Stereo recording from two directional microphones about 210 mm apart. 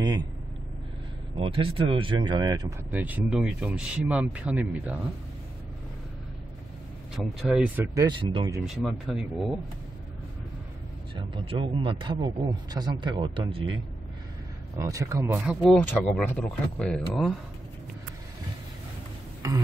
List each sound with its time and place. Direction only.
1.3 s a man's voice: 25° right (ahead or behind)
2.9 s speech: 10° right (ahead or behind)
7.4 s speech: 5° right (ahead or behind)
8.1 s a man's voice: 25° right (ahead or behind)
8.6 s speech: centre (ahead or behind)
11.1 s a man's voice: 25° right (ahead or behind)
14.8 s speech: 15° right (ahead or behind)
15.6 s speech: 5° left (ahead or behind)
19.4 s speech: 15° right (ahead or behind)